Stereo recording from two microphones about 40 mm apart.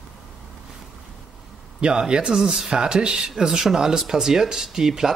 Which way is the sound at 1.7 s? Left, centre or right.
Right.